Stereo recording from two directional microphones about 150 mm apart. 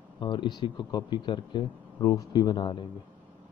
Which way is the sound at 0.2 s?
30° left (ahead or behind).